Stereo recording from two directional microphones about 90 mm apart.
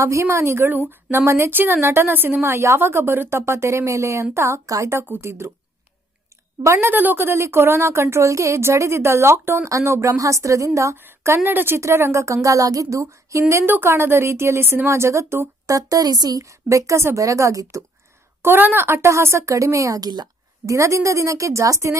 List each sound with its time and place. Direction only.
0.0 s speech: 30° right (ahead or behind)
6.6 s a woman's voice: 30° right (ahead or behind)
11.0 s a woman's voice: 25° right (ahead or behind)
18.4 s a woman's voice: 25° right (ahead or behind); by 20.7 s 50° right (ahead or behind)
20.7 s a woman's voice: 35° right (ahead or behind)